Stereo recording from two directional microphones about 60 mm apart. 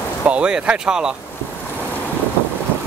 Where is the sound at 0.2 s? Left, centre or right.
Centre.